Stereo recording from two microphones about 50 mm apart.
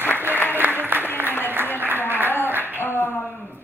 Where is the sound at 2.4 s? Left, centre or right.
Right.